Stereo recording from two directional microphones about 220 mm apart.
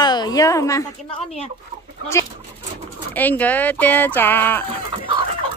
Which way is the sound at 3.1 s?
5° left (ahead or behind).